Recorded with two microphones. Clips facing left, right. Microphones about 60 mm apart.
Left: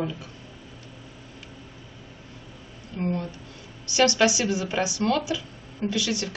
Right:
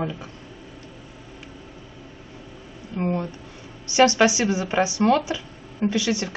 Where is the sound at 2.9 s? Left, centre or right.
Right.